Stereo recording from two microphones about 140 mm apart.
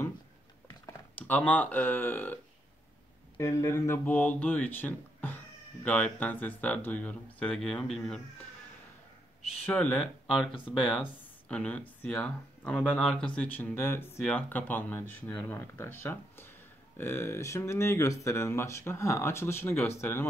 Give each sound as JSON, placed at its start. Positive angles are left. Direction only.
{"t": 1.2, "sound": "speech", "side_deg": 10}
{"t": 3.3, "sound": "speech", "side_deg": 20}
{"t": 9.7, "sound": "speech", "side_deg": 10}
{"t": 10.4, "sound": "speech", "side_deg": -5}
{"t": 11.4, "sound": "speech", "side_deg": 10}